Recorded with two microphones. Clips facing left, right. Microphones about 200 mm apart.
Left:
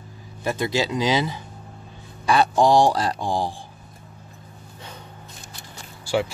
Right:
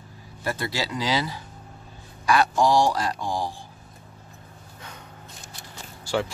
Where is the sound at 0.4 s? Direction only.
20° left (ahead or behind).